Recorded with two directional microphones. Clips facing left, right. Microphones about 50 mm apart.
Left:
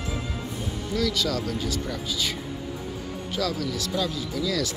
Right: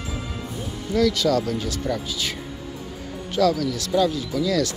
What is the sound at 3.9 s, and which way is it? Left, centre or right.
Speech, centre.